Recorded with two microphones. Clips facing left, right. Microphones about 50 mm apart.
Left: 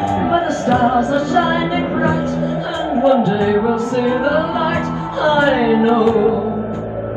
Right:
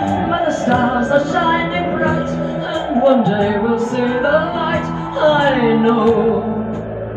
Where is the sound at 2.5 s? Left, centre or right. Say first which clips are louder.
Right 1 dB; right.